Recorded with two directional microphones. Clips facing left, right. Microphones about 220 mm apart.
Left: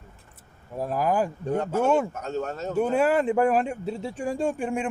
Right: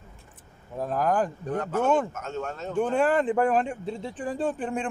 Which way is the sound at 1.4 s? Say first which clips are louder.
Left 3 dB; 25° left (ahead or behind).